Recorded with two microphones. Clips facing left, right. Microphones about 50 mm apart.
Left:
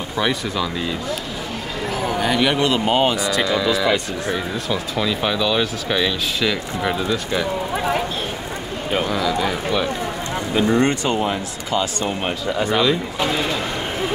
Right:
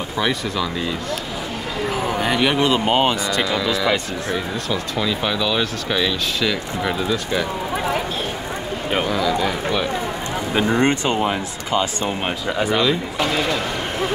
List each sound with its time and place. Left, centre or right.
0.2 s speech: centre
2.0 s speech: centre
9.0 s speech: centre
10.5 s speech: right
12.7 s speech: centre